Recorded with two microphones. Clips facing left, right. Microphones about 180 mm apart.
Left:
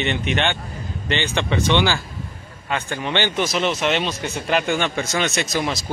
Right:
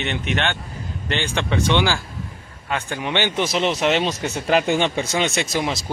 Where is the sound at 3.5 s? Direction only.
30° right (ahead or behind).